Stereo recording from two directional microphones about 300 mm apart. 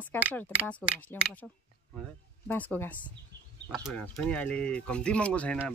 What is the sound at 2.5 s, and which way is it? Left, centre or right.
Speech, centre.